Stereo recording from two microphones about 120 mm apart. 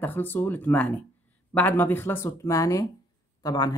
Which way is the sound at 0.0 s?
15° left (ahead or behind).